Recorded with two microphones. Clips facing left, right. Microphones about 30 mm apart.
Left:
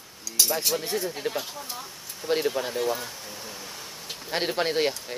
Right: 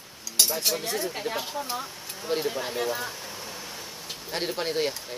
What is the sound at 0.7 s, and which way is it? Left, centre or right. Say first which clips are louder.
Speech: left 2 dB; centre.